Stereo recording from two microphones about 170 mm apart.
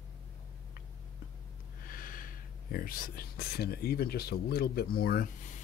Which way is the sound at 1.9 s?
55° left (ahead or behind).